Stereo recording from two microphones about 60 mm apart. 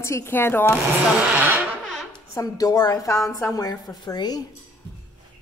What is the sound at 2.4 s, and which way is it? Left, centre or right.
Speech, left.